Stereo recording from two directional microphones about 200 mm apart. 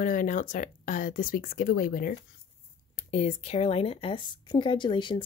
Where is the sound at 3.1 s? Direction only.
35° left (ahead or behind).